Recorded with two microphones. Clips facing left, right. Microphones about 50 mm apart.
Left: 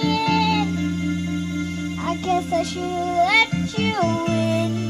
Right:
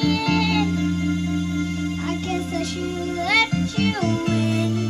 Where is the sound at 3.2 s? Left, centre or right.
Centre.